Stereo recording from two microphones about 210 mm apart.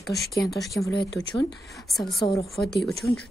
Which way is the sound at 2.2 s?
20° left (ahead or behind).